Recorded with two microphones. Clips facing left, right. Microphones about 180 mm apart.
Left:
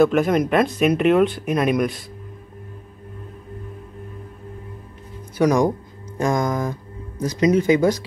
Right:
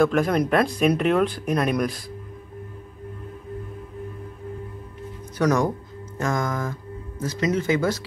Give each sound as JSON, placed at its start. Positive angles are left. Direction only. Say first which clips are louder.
{"t": 0.0, "sound": "speech", "louder": "left 3 dB", "side_deg": 5}
{"t": 5.4, "sound": "speech", "louder": "left 4 dB", "side_deg": 10}